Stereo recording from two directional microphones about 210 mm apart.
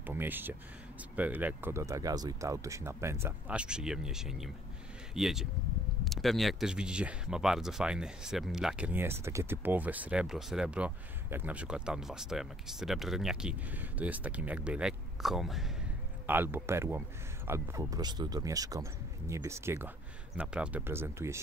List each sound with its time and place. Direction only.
0.0 s speech: 10° right (ahead or behind)